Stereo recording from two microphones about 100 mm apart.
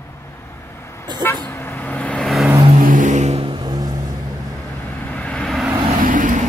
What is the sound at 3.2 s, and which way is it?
Vehicle, 80° right.